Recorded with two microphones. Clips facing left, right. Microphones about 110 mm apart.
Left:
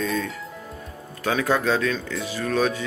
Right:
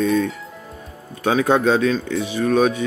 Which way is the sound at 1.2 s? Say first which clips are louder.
Right 5 dB; 20° right (ahead or behind).